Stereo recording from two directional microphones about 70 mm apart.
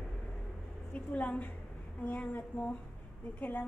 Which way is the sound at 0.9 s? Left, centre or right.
Left.